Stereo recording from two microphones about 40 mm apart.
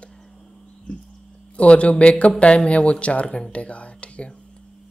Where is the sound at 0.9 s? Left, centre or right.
Left.